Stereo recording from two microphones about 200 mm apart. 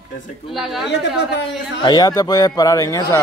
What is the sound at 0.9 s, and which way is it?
Speech, 60° left (ahead or behind).